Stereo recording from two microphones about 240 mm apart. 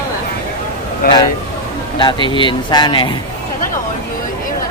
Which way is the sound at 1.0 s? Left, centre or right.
Left.